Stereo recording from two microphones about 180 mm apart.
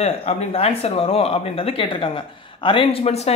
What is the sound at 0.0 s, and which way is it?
Speech, 35° left (ahead or behind).